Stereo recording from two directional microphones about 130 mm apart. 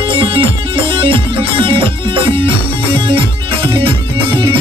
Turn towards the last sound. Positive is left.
turn(degrees=-40)  # may be behind; listen again after turning